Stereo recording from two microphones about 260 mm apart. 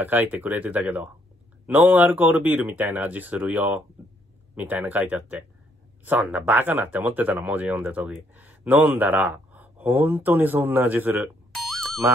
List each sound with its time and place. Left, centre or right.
0.0 s speech: centre